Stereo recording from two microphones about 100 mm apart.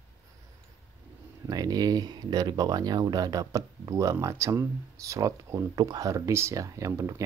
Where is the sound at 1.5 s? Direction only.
40° right (ahead or behind).